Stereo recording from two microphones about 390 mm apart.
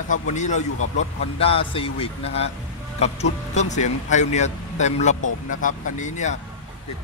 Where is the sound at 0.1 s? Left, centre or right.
Centre.